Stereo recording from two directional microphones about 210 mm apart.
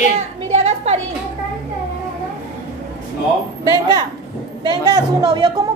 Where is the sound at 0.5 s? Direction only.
30° right (ahead or behind).